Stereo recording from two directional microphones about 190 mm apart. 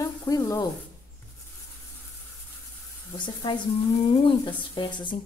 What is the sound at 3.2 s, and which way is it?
A woman's voice, 25° left (ahead or behind).